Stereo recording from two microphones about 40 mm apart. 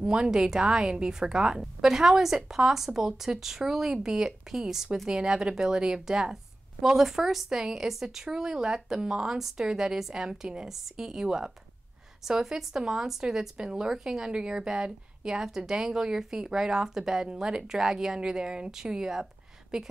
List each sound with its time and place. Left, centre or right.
0.0 s a woman's voice: right